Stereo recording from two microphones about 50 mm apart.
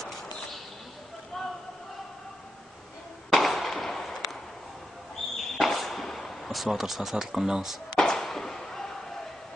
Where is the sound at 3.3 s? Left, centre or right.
Centre.